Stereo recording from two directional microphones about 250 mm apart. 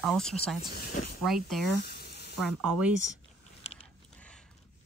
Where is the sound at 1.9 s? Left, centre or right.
Left.